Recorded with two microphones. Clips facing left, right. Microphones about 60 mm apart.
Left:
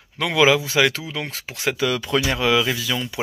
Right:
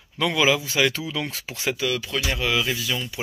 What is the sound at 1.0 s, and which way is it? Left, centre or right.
Speech, left.